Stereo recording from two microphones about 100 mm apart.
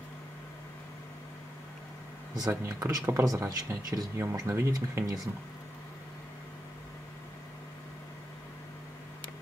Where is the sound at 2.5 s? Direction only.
35° right (ahead or behind).